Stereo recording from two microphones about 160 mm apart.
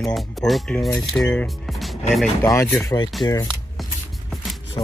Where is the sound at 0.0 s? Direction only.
Centre (ahead or behind).